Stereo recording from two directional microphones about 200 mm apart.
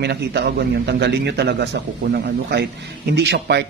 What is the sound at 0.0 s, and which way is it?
A man's voice, 55° right (ahead or behind).